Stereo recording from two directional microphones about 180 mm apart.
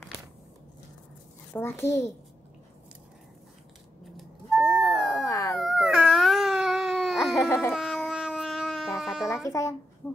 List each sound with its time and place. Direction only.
1.5 s a child's voice: 15° left (ahead or behind)
4.2 s music: centre (ahead or behind)
5.1 s howl: 20° left (ahead or behind)
5.6 s a sound: centre (ahead or behind)
7.4 s baby cry: 15° left (ahead or behind)
7.7 s a sound: centre (ahead or behind)
9.3 s a child's voice: 15° left (ahead or behind)